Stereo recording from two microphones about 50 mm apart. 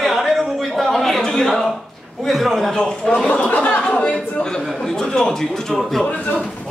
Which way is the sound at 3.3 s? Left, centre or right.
Left.